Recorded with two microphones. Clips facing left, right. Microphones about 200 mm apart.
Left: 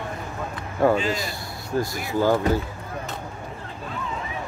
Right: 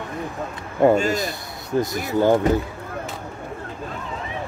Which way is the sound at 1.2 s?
20° right (ahead or behind).